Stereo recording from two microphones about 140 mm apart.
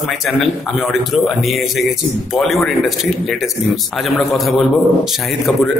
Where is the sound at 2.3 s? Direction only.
Centre (ahead or behind).